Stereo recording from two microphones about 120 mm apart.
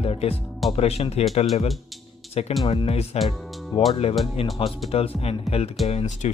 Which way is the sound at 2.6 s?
50° left (ahead or behind).